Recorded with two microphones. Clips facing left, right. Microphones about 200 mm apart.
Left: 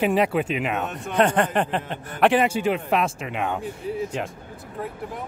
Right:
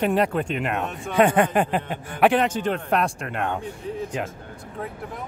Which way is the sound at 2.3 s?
10° left (ahead or behind).